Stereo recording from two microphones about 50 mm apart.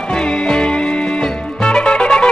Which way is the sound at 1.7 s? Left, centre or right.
Centre.